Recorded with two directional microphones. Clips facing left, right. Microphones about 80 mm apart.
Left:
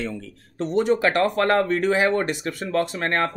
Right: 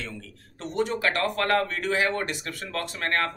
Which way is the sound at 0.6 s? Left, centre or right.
Left.